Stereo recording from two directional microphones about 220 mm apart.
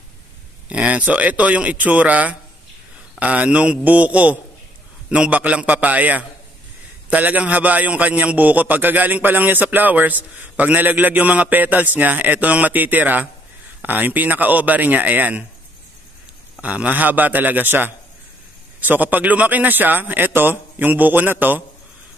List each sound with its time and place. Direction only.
0.7 s a man's voice: 5° right (ahead or behind)
16.5 s a man's voice: 5° right (ahead or behind)